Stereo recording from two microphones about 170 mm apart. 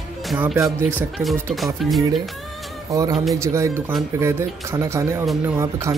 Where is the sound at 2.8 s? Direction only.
20° right (ahead or behind).